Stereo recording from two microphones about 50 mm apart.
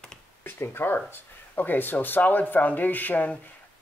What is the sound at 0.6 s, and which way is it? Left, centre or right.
Speech, left.